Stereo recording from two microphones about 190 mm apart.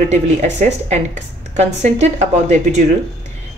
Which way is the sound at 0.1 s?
35° right (ahead or behind).